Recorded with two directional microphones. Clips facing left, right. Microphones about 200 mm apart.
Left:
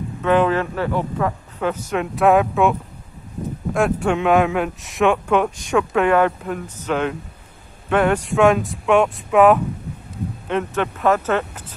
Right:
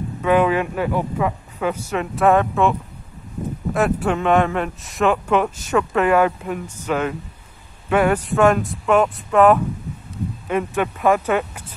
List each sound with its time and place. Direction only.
0.2 s speech: 5° right (ahead or behind)
3.7 s speech: centre (ahead or behind)